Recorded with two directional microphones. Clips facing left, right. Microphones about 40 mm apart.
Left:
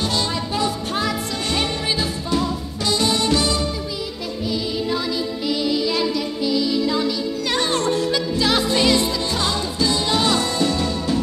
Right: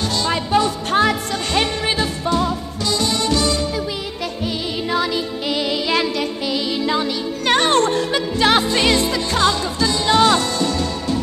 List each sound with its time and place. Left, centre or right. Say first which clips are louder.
0.3 s music: right 5 dB; right
4.8 s music: right 3 dB; right
10.0 s speech: right 9 dB; right